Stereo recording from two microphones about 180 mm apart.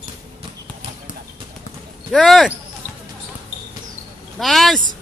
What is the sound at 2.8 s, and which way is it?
Basketball bounce, 10° right (ahead or behind).